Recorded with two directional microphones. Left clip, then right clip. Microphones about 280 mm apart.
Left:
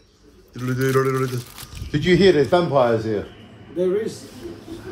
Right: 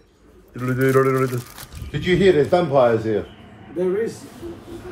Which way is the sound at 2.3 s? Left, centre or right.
Centre.